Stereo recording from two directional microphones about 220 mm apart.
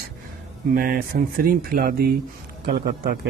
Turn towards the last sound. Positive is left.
turn(degrees=-45)  # may be behind; listen again after turning